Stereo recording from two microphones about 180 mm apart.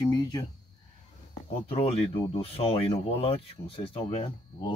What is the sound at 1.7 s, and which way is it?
Speech, 35° left (ahead or behind).